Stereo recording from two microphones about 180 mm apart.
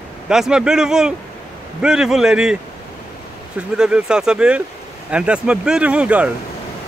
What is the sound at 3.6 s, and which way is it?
Speech, 5° right (ahead or behind).